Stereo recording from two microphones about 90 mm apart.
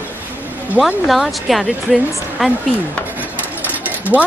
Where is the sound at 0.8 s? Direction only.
Centre (ahead or behind).